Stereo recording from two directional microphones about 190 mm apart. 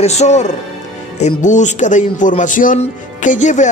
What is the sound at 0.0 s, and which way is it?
Speech, 35° left (ahead or behind).